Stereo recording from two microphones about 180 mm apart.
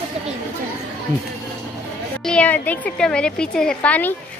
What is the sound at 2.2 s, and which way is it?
A woman's voice, 5° left (ahead or behind).